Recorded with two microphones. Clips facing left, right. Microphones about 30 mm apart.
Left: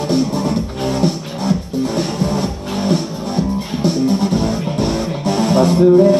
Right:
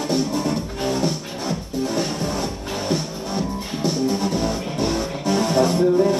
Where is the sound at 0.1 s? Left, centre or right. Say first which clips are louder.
Left 5 dB; centre.